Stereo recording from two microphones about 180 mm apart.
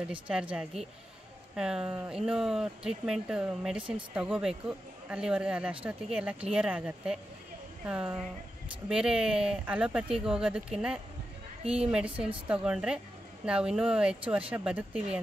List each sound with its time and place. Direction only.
0.0 s a man's voice: 5° right (ahead or behind)
11.6 s a woman's voice: 35° right (ahead or behind)
11.9 s a man's voice: 5° right (ahead or behind)